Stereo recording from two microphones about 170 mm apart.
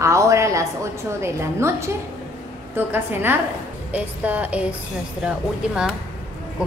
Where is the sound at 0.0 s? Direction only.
20° right (ahead or behind).